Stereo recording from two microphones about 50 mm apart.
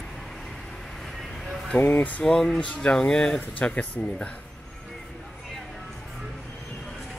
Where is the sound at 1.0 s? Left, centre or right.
Centre.